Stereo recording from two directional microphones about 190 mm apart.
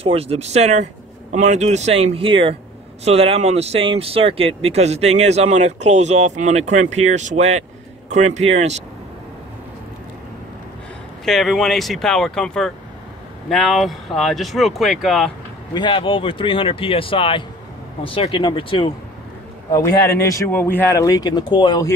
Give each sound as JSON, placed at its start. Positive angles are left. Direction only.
{"t": 0.0, "sound": "speech", "side_deg": -30}
{"t": 11.2, "sound": "speech", "side_deg": 0}
{"t": 15.7, "sound": "speech", "side_deg": 25}
{"t": 20.2, "sound": "speech", "side_deg": 15}